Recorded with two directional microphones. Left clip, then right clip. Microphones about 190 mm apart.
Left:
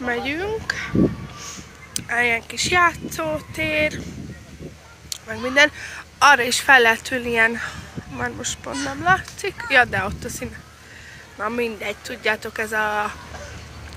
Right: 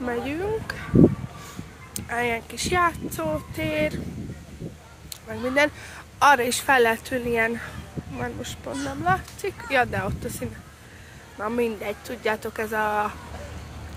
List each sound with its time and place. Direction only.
0.0 s speech: 5° right (ahead or behind)
2.0 s speech: 10° right (ahead or behind)
5.1 s speech: 10° right (ahead or behind)
11.5 s speech: 15° right (ahead or behind)